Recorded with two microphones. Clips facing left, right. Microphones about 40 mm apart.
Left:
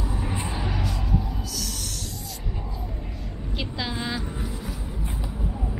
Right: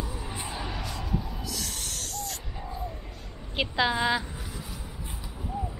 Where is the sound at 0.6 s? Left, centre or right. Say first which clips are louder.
Left 4 dB; centre.